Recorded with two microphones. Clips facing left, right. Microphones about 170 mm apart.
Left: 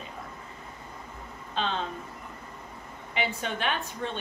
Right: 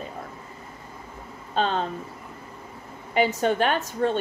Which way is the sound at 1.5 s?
45° right (ahead or behind).